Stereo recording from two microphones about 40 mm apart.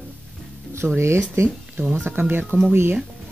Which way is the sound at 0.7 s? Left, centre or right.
Right.